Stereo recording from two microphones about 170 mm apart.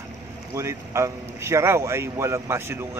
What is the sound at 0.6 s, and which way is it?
A man's voice, 15° right (ahead or behind).